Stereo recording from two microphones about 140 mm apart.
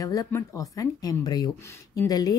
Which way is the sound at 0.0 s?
25° left (ahead or behind).